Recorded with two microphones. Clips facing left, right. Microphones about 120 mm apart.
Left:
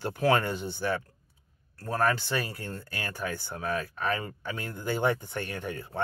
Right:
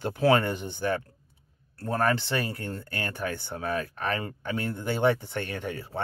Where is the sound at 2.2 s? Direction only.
20° right (ahead or behind).